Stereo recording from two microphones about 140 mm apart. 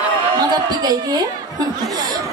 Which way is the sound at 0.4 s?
30° right (ahead or behind).